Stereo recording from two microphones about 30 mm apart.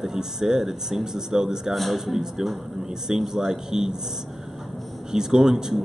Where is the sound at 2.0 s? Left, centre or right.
Centre.